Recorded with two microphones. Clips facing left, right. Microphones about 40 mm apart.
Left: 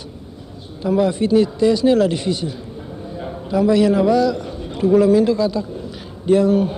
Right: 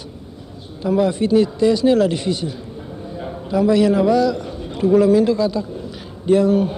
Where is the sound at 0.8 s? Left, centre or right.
Right.